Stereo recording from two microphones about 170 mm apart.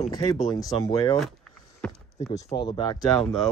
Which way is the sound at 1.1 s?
5° left (ahead or behind).